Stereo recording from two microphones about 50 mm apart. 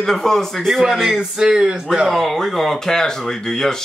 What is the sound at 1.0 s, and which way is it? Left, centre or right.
Speech, centre.